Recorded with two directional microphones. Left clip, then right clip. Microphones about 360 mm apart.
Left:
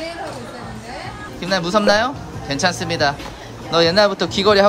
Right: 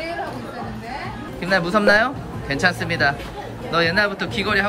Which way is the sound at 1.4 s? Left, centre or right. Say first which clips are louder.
Left 1 dB; centre.